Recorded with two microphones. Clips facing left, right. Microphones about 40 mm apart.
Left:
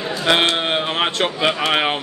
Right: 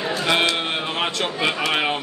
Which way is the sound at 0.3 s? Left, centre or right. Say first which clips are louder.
Left 5 dB; left.